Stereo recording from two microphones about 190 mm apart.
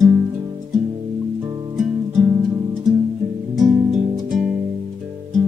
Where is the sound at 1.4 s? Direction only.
20° right (ahead or behind).